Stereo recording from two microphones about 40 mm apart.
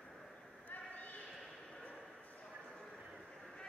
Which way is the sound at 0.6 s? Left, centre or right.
Left.